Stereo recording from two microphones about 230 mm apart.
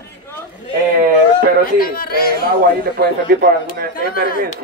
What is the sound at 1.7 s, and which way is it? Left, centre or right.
Speech, left.